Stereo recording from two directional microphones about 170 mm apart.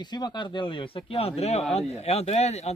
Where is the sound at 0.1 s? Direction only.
25° left (ahead or behind).